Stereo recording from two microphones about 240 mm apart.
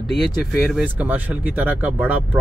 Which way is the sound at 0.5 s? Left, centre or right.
Centre.